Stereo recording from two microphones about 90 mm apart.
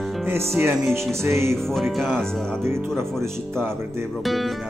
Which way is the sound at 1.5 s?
5° left (ahead or behind).